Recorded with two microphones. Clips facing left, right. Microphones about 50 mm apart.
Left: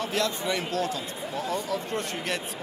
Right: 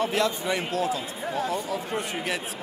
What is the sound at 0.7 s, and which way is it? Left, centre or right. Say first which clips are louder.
Speech: right 2 dB; centre.